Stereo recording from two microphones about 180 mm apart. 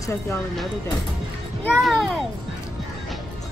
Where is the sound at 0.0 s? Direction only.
15° left (ahead or behind).